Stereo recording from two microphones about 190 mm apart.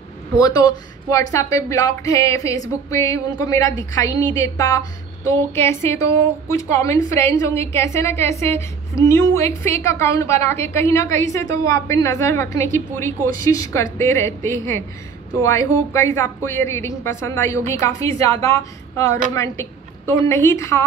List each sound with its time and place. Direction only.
0.4 s speech: 20° left (ahead or behind)